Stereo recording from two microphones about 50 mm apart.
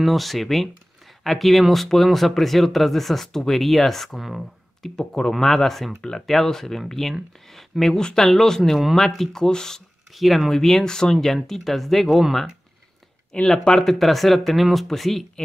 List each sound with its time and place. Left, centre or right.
0.0 s speech: centre
4.9 s speech: centre
5.9 s speech: centre
6.2 s speech: centre
10.1 s speech: centre
13.5 s speech: centre